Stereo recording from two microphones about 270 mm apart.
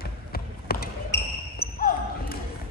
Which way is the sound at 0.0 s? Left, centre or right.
Left.